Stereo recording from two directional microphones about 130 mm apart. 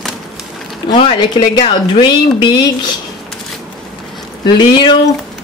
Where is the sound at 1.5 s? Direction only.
35° left (ahead or behind).